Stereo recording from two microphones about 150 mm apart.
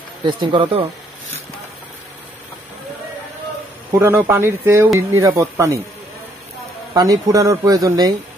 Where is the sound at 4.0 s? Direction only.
15° right (ahead or behind).